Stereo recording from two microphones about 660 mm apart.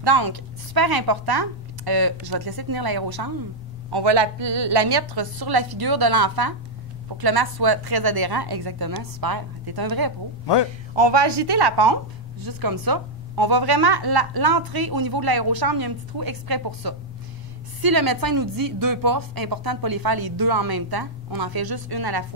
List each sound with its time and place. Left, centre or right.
0.0 s speech: right